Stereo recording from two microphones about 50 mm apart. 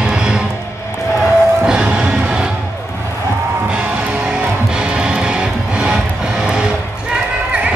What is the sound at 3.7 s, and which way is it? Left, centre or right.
Music, right.